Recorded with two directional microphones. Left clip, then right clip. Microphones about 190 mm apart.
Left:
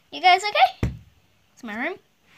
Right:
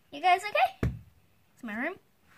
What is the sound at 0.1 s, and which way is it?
A child's voice, 25° right (ahead or behind).